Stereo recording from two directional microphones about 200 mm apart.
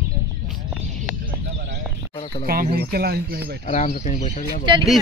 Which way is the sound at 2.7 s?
50° right (ahead or behind).